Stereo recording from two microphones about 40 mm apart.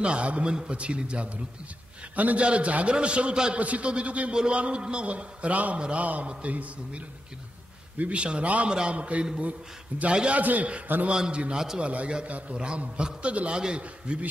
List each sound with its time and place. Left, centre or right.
0.0 s a man's voice: right
2.1 s a man's voice: right
2.4 s a man's voice: right
3.5 s a man's voice: right
8.0 s a man's voice: right
11.1 s a man's voice: right
11.8 s a man's voice: right
12.5 s a man's voice: right